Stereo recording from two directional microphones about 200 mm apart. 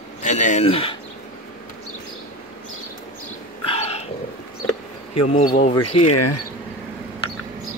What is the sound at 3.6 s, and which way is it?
Dog, 30° left (ahead or behind).